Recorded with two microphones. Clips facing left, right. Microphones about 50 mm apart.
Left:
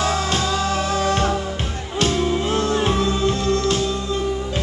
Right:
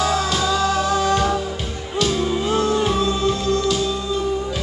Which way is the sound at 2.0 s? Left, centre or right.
Left.